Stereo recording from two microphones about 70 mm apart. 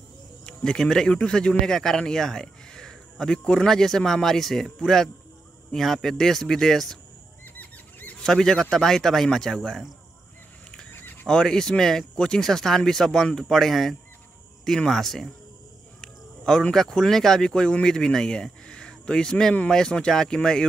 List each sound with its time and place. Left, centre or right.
0.5 s a man's voice: centre
7.4 s a sound: left
8.3 s a man's voice: centre
11.2 s a man's voice: centre
16.0 s a sound: centre
16.7 s speech: centre